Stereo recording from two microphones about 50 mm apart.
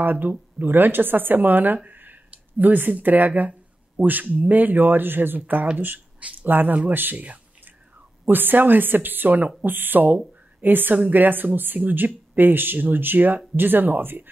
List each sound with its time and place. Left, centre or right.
0.0 s speech: right